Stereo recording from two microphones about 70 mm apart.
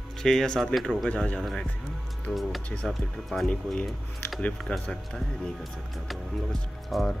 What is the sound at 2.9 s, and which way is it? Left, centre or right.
Speech, centre.